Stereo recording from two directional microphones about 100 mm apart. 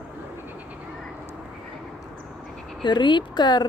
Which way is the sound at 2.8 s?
50° left (ahead or behind).